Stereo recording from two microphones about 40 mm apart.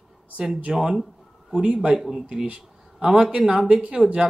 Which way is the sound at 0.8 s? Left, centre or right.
Centre.